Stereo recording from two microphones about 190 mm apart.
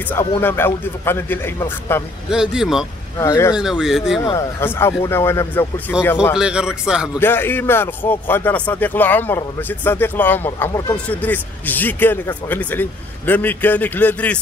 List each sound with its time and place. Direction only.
0.4 s speech: 10° left (ahead or behind)
2.3 s speech: 5° right (ahead or behind)
3.2 s speech: 15° left (ahead or behind)
3.7 s speech: centre (ahead or behind)
4.2 s speech: 15° left (ahead or behind)
6.3 s speech: 5° right (ahead or behind)
7.2 s speech: 10° left (ahead or behind)